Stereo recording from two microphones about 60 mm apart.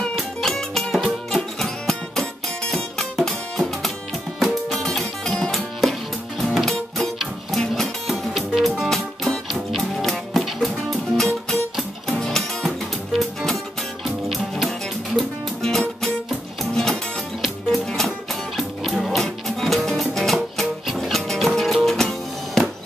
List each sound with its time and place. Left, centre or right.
0.4 s music: centre
17.4 s music: centre